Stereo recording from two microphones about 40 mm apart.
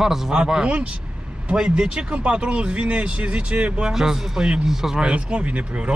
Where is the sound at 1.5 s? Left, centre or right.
Right.